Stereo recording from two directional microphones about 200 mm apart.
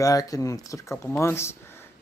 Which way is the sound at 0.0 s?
15° left (ahead or behind).